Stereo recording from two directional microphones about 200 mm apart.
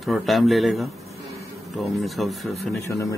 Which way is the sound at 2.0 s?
Centre (ahead or behind).